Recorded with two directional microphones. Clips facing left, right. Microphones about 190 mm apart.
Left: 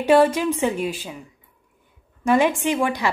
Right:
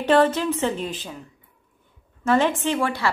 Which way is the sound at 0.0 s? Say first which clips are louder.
Left 2 dB; 10° left (ahead or behind).